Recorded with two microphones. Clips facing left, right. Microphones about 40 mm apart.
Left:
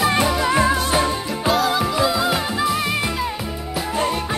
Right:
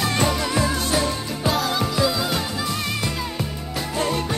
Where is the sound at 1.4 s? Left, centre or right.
Centre.